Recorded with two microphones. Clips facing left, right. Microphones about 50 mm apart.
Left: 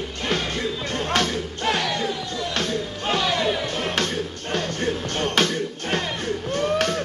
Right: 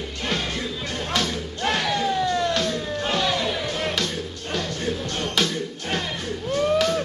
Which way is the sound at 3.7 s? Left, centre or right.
Left.